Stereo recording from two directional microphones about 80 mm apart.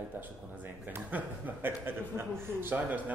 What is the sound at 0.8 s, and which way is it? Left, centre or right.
A man's voice, right.